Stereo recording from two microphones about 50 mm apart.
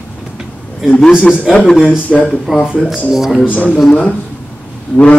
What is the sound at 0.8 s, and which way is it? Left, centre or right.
Speech, left.